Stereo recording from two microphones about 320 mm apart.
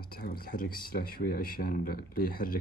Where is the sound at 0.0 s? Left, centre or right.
Left.